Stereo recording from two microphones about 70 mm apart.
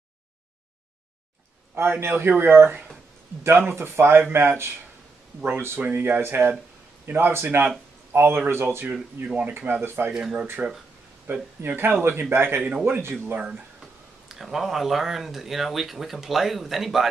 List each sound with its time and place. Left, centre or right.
1.8 s speech: right
8.8 s speech: centre
9.7 s speech: right
10.1 s speech: centre
11.3 s speech: right
14.3 s speech: centre